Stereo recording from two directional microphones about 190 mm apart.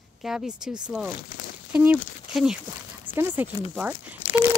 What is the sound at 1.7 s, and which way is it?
Speech, 5° right (ahead or behind).